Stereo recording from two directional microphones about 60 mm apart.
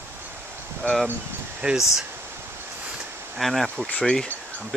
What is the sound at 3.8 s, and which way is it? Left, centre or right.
Speech, centre.